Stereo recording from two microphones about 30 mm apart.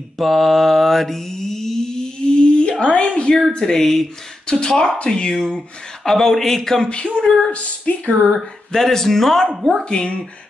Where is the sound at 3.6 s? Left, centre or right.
Centre.